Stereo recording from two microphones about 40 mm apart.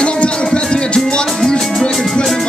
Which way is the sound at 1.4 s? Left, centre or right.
Centre.